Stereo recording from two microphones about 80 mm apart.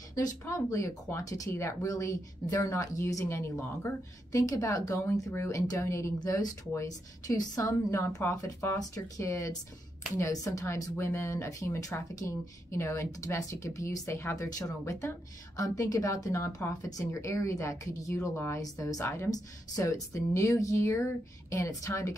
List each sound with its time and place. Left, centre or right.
0.1 s speech: left
4.3 s speech: left
6.1 s speech: left
8.7 s speech: left
18.3 s speech: left
18.6 s speech: left
19.0 s speech: left
19.7 s speech: left